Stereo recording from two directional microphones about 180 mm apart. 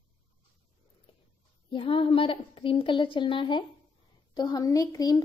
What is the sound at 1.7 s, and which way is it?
A woman's voice, 30° left (ahead or behind).